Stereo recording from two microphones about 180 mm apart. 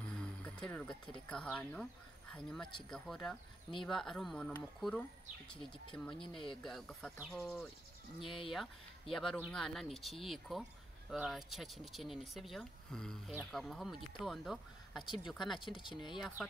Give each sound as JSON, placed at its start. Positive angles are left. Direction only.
{"t": 0.1, "sound": "a sound", "side_deg": 5}
{"t": 1.3, "sound": "speech", "side_deg": 5}
{"t": 8.2, "sound": "speech", "side_deg": 30}
{"t": 9.1, "sound": "speech", "side_deg": 0}
{"t": 15.6, "sound": "speech", "side_deg": 25}
{"t": 16.2, "sound": "speech", "side_deg": 10}